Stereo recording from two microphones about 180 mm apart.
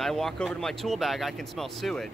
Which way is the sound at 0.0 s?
Centre (ahead or behind).